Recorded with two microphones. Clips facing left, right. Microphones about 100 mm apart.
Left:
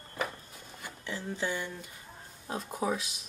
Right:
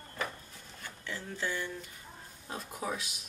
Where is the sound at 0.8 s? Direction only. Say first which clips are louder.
Left 4 dB; 15° left (ahead or behind).